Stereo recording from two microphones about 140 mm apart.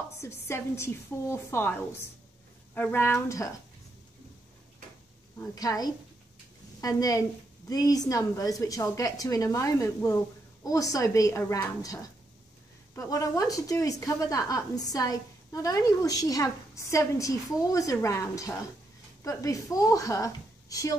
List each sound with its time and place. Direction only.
0.2 s a woman's voice: 20° left (ahead or behind)
5.5 s a woman's voice: 25° left (ahead or behind)